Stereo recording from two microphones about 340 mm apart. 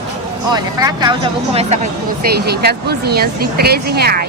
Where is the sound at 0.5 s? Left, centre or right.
Centre.